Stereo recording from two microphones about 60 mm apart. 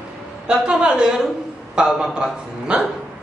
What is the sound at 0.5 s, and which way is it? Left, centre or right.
Speech, centre.